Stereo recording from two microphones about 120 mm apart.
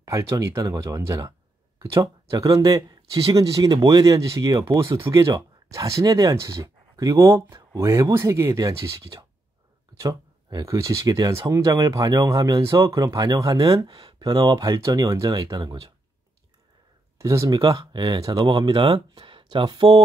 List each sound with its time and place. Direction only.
0.0 s speech: 25° right (ahead or behind)
17.2 s speech: 30° right (ahead or behind)